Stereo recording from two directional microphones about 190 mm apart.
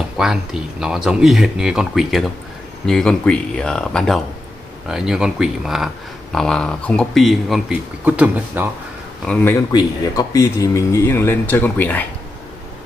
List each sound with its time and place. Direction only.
0.2 s speech: 5° right (ahead or behind)
9.3 s speech: 10° left (ahead or behind)
9.7 s speech: 20° left (ahead or behind)